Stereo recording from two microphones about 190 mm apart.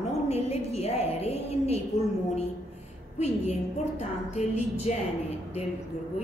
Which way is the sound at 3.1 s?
35° left (ahead or behind).